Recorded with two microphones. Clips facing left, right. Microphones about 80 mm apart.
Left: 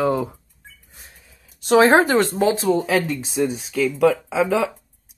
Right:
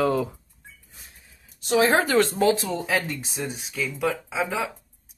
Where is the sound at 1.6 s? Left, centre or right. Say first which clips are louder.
Left 6 dB; left.